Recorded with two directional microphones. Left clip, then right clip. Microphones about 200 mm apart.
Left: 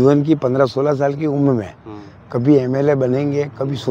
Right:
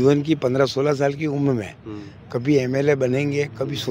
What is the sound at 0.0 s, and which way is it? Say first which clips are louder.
A man's voice: left 4 dB; 15° left (ahead or behind).